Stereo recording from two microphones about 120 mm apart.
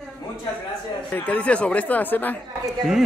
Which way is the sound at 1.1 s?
15° left (ahead or behind).